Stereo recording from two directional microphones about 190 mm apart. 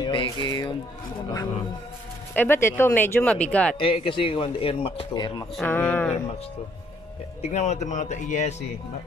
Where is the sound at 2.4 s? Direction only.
10° left (ahead or behind).